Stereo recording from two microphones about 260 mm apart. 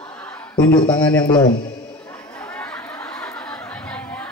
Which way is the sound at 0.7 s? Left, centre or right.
Centre.